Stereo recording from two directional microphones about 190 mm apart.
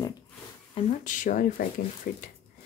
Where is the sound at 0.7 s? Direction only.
40° left (ahead or behind).